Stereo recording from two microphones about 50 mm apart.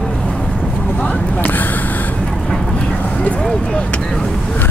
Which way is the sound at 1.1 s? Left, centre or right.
Left.